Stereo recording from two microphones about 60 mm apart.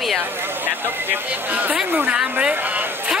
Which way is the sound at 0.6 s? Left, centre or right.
Right.